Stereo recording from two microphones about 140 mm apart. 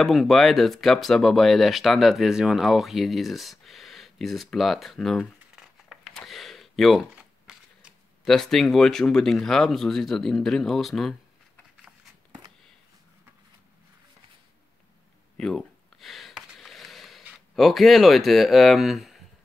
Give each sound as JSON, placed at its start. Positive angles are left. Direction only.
{"t": 0.0, "sound": "speech", "side_deg": 0}
{"t": 15.3, "sound": "a sound", "side_deg": 5}
{"t": 17.6, "sound": "speech", "side_deg": 0}